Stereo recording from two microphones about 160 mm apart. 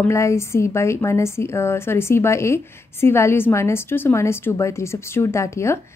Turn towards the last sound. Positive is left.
turn(degrees=15)  # may be behind; listen again after turning